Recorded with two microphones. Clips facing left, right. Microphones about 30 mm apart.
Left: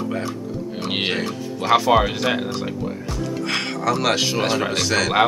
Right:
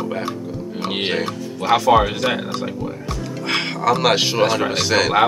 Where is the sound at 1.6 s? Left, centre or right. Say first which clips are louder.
Right 2 dB; centre.